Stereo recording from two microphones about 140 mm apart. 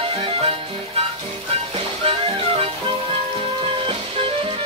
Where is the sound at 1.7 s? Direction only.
40° right (ahead or behind).